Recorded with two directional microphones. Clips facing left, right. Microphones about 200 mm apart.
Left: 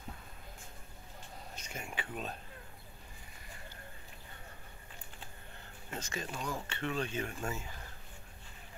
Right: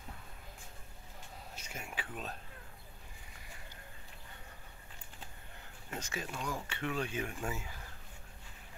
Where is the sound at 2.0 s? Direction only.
Centre (ahead or behind).